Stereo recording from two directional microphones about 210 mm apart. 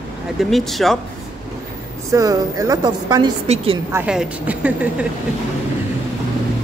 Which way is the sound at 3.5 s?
30° right (ahead or behind).